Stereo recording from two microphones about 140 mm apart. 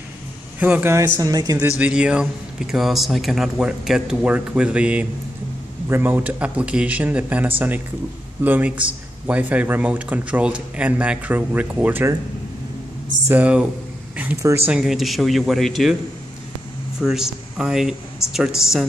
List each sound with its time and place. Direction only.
0.6 s speech: 10° right (ahead or behind)
0.9 s speech: 25° right (ahead or behind)
1.6 s speech: 10° right (ahead or behind)
13.3 s speech: 10° right (ahead or behind)
14.7 s speech: 5° right (ahead or behind)
17.0 s speech: 5° right (ahead or behind)